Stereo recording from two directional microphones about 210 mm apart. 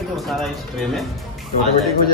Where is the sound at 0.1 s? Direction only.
Centre (ahead or behind).